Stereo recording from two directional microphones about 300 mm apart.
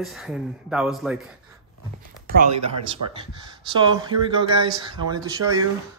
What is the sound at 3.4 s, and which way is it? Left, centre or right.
Speech, centre.